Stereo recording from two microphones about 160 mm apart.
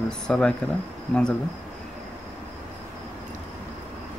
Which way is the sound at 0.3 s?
5° left (ahead or behind).